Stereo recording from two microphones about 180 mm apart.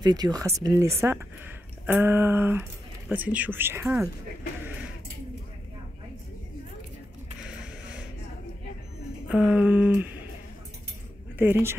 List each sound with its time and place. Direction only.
0.0 s speech: 20° right (ahead or behind)
9.3 s speech: 5° right (ahead or behind)
11.3 s speech: 10° right (ahead or behind)